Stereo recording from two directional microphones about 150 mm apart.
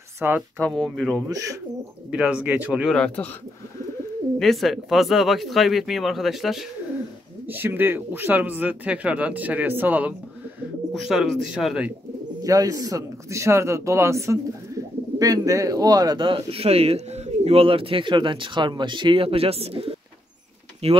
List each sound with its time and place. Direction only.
0.2 s speech: 10° right (ahead or behind)
0.6 s speech: 5° left (ahead or behind)
1.3 s a man's voice: 20° right (ahead or behind)
2.0 s speech: 5° right (ahead or behind)
4.4 s speech: centre (ahead or behind)
7.4 s speech: 15° right (ahead or behind)
10.9 s speech: centre (ahead or behind)
12.4 s a man's voice: 25° right (ahead or behind); by 21.0 s 45° right (ahead or behind)